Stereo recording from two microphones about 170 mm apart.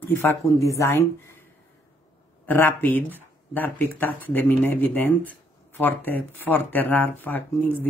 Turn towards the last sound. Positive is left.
turn(degrees=10)  # may be behind; listen again after turning